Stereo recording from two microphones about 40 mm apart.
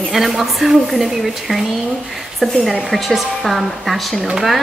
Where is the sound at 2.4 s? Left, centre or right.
Centre.